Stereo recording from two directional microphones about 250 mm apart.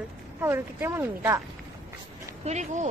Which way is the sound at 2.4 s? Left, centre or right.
Right.